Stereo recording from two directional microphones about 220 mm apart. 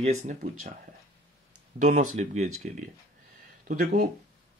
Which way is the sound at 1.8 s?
35° right (ahead or behind).